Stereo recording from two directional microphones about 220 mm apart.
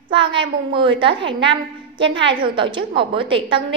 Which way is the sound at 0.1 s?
20° right (ahead or behind).